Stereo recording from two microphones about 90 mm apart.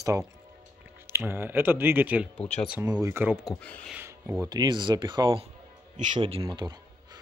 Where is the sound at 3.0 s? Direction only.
25° right (ahead or behind).